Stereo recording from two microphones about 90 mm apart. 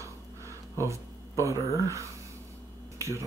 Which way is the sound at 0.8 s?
35° right (ahead or behind).